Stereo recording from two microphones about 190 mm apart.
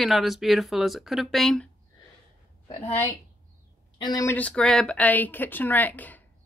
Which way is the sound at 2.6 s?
30° left (ahead or behind).